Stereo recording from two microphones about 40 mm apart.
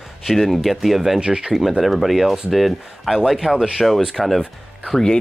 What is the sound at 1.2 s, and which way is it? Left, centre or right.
Speech, right.